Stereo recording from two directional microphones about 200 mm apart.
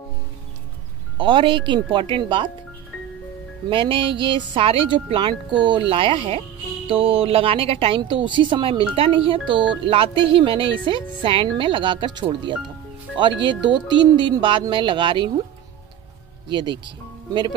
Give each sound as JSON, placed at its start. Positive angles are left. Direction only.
{"t": 1.1, "sound": "a woman's voice", "side_deg": -25}
{"t": 3.7, "sound": "a woman's voice", "side_deg": -25}
{"t": 16.4, "sound": "speech", "side_deg": -25}